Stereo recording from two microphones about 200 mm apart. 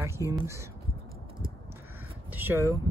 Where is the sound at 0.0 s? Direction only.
15° right (ahead or behind).